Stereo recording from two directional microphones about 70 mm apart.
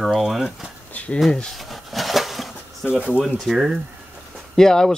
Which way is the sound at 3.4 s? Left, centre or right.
Centre.